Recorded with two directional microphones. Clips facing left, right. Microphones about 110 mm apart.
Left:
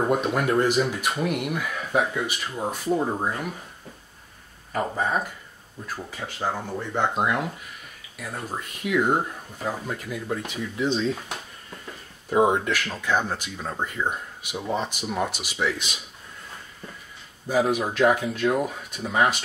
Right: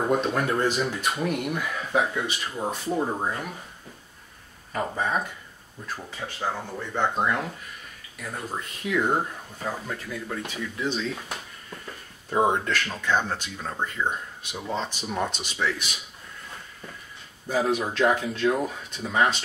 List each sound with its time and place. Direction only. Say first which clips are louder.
0.1 s speech: left 2 dB; 10° left (ahead or behind)
4.7 s speech: left 2 dB; 5° left (ahead or behind)
12.3 s speech: left 2 dB; 5° left (ahead or behind)
17.5 s speech: left 2 dB; 10° left (ahead or behind)